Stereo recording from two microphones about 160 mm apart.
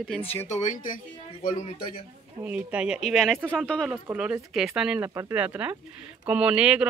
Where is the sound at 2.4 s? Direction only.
10° right (ahead or behind).